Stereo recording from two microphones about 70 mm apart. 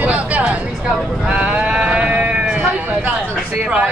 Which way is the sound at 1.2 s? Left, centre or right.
Centre.